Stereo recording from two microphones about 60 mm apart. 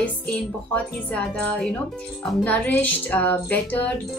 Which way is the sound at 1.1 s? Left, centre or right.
Centre.